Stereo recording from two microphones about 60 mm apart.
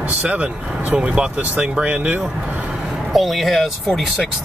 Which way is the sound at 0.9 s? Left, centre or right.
Centre.